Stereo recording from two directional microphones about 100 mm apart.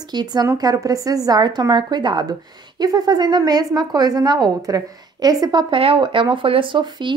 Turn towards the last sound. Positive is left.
turn(degrees=-55)  # may be behind; listen again after turning